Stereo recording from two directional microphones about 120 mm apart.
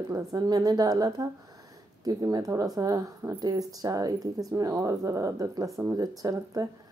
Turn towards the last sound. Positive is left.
turn(degrees=-30)  # may be behind; listen again after turning